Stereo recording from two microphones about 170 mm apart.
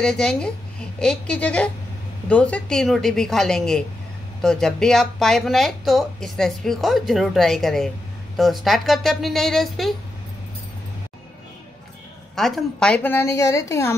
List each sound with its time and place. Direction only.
0.0 s a woman's voice: 5° left (ahead or behind)
12.4 s a woman's voice: centre (ahead or behind)